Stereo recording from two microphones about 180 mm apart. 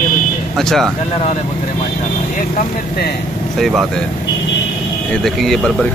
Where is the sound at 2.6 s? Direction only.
60° left (ahead or behind).